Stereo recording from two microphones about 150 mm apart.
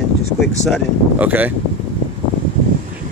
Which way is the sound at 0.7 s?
10° right (ahead or behind).